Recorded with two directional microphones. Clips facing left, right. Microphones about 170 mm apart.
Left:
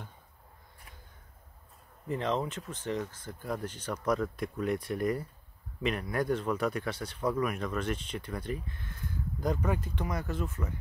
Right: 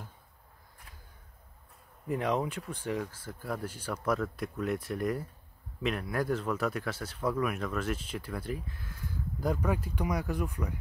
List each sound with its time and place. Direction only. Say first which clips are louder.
2.0 s speech: right 1 dB; 10° right (ahead or behind)